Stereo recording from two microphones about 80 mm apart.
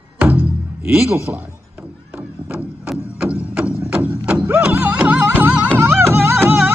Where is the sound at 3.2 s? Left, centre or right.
Centre.